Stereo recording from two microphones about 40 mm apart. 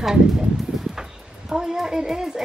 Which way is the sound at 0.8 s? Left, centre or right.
Centre.